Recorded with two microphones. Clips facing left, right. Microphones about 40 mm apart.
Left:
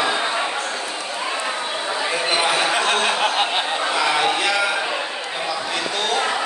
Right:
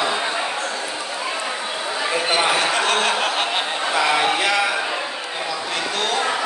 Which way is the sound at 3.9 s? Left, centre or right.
Centre.